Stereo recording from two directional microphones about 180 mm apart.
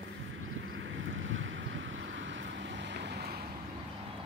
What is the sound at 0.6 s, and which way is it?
Waves, 90° right.